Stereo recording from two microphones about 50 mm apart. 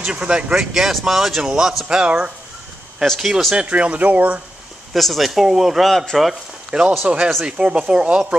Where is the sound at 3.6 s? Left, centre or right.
Right.